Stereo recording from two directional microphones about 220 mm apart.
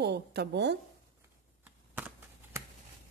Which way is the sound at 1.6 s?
5° right (ahead or behind).